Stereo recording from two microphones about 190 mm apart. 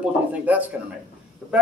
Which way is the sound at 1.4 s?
5° right (ahead or behind).